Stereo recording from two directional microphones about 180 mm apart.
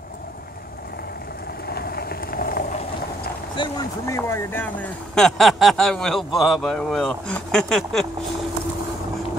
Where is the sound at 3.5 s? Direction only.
25° left (ahead or behind).